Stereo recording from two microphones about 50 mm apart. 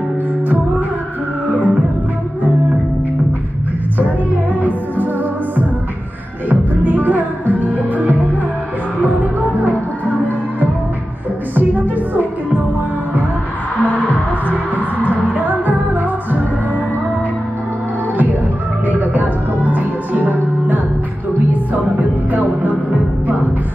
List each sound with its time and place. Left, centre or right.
1.5 s music: right
4.3 s music: right
6.5 s music: right
12.1 s music: right
13.7 s music: left
14.5 s music: right
18.9 s music: right